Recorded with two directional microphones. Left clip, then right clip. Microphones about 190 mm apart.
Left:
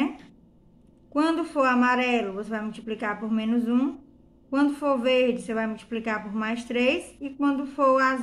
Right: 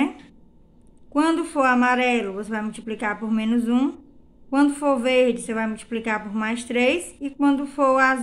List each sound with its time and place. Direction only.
1.1 s a woman's voice: 30° right (ahead or behind)